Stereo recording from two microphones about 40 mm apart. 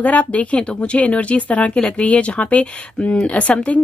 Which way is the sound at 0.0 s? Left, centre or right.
Left.